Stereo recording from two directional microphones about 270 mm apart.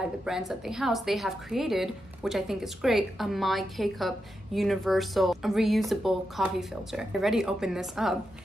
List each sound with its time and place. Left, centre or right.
0.0 s a woman's voice: centre